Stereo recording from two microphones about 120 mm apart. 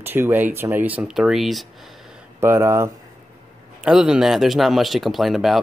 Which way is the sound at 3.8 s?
5° right (ahead or behind).